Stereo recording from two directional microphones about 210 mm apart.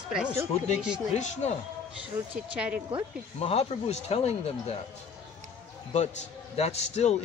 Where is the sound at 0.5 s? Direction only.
30° left (ahead or behind).